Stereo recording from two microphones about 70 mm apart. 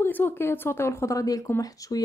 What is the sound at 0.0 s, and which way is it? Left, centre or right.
Speech, left.